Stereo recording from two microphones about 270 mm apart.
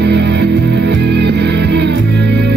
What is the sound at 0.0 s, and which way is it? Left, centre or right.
Music, right.